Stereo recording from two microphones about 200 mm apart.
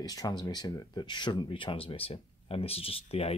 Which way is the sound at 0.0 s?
20° left (ahead or behind).